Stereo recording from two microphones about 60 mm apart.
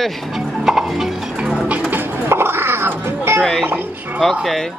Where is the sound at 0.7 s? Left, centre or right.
Centre.